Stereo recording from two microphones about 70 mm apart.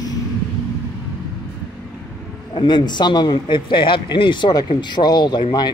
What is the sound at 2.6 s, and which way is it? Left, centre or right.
Speech, left.